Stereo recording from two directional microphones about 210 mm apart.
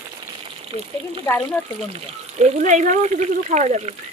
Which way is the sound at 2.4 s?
35° right (ahead or behind).